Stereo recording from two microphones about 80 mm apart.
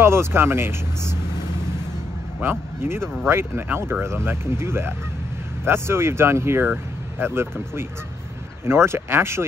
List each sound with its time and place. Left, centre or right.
0.0 s speech: right
3.3 s speech: right